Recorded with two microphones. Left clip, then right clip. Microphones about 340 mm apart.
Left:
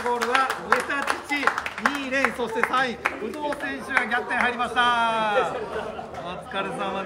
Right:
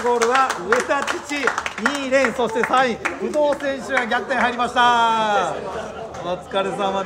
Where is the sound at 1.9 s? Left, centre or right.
Centre.